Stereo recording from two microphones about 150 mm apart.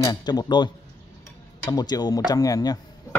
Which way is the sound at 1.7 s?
25° left (ahead or behind).